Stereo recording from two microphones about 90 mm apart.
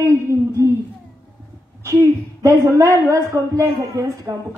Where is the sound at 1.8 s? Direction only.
30° right (ahead or behind).